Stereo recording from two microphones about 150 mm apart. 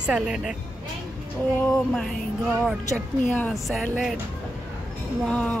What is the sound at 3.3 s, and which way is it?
Speech, 10° left (ahead or behind).